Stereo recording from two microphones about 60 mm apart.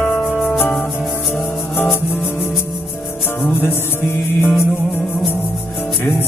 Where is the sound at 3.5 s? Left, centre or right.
Left.